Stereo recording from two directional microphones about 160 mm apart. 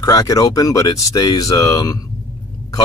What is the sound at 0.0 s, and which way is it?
Speech, 20° left (ahead or behind).